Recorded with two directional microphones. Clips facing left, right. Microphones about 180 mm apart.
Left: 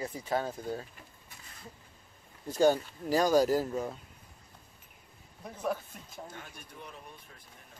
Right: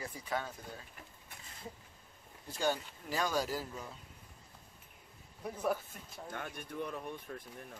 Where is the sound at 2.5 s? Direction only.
40° left (ahead or behind).